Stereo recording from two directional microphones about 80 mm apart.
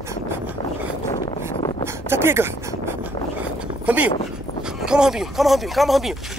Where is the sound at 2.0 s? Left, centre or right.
Right.